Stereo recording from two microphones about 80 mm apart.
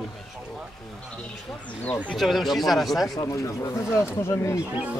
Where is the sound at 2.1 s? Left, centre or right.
Centre.